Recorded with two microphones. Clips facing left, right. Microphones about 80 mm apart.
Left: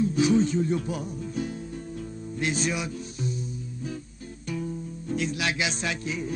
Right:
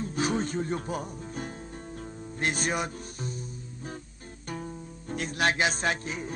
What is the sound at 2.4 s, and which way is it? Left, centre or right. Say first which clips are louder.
Speech: left 1 dB; right.